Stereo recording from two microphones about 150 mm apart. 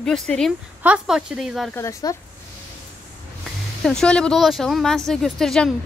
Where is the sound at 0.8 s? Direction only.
5° right (ahead or behind).